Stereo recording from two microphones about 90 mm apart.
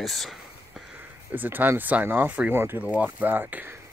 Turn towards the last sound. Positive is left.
turn(degrees=-20)  # may be behind; listen again after turning